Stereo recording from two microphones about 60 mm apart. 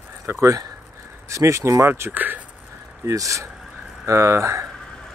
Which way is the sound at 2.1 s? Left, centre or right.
Right.